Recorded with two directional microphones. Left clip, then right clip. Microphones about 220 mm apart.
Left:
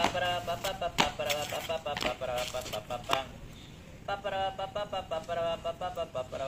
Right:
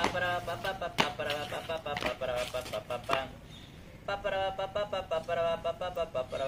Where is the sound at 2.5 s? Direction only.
45° right (ahead or behind).